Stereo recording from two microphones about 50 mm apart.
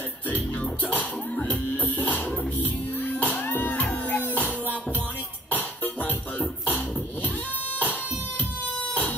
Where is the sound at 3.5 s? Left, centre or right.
Left.